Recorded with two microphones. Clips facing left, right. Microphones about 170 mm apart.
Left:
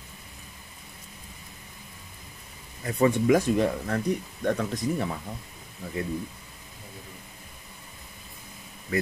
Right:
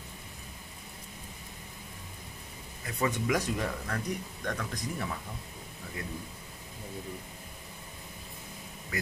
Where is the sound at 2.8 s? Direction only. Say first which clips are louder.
Left 9 dB; 30° left (ahead or behind).